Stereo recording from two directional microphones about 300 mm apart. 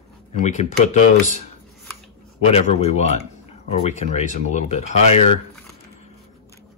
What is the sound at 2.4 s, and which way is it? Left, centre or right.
Speech, left.